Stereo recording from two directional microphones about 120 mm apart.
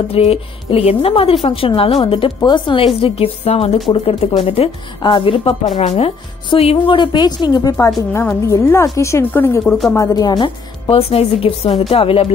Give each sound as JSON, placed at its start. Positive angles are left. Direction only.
{"t": 0.1, "sound": "a woman's voice", "side_deg": 55}
{"t": 7.0, "sound": "a woman's voice", "side_deg": 40}
{"t": 8.1, "sound": "speech", "side_deg": 20}
{"t": 9.9, "sound": "a woman's voice", "side_deg": 30}
{"t": 10.9, "sound": "a woman's voice", "side_deg": 55}